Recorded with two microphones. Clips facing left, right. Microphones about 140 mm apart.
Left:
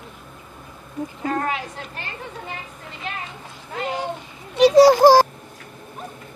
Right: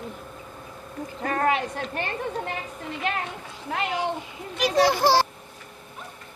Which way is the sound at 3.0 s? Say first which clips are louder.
Right 4 dB; 65° right (ahead or behind).